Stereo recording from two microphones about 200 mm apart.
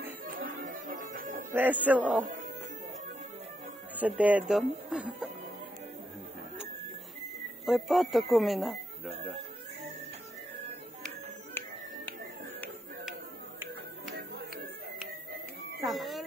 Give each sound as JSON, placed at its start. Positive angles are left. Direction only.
{"t": 0.3, "sound": "music", "side_deg": -45}
{"t": 1.5, "sound": "speech", "side_deg": -10}
{"t": 3.9, "sound": "speech", "side_deg": -5}
{"t": 7.6, "sound": "speech", "side_deg": 0}
{"t": 15.9, "sound": "speech", "side_deg": 0}